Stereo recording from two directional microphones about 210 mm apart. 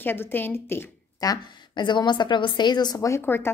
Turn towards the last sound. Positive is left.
turn(degrees=10)  # may be behind; listen again after turning